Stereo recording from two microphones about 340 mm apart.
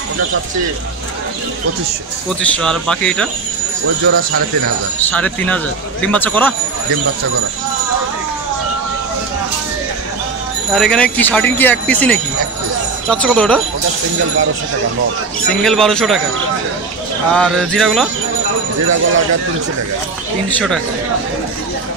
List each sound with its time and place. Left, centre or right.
2.4 s speech: centre
3.8 s speech: right
5.0 s speech: centre
10.7 s speech: centre
15.4 s speech: centre
17.3 s speech: centre
20.4 s speech: centre